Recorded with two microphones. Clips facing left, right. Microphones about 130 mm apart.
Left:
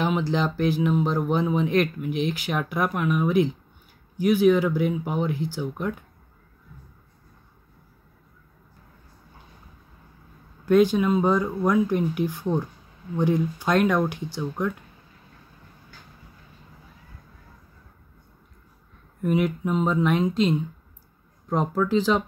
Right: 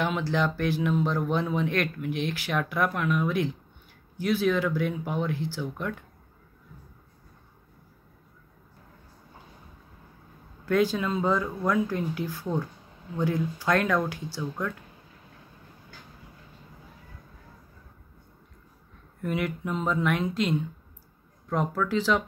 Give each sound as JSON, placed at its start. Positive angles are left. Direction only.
{"t": 0.0, "sound": "speech", "side_deg": 20}
{"t": 10.6, "sound": "speech", "side_deg": 20}
{"t": 19.2, "sound": "speech", "side_deg": 20}